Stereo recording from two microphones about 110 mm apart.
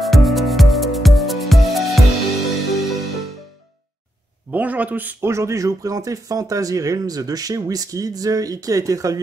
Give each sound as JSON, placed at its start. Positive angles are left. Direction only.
{"t": 0.0, "sound": "music", "side_deg": 0}
{"t": 4.5, "sound": "a man's voice", "side_deg": -15}